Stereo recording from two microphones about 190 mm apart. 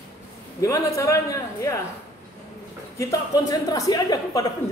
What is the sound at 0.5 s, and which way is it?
A man's voice, 15° left (ahead or behind).